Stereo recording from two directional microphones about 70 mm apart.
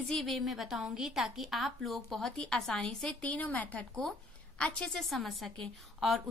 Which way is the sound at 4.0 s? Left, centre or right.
Centre.